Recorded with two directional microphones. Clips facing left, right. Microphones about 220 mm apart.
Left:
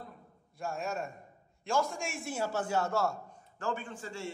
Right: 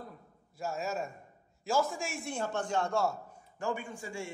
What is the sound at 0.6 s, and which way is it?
A man's voice, centre (ahead or behind).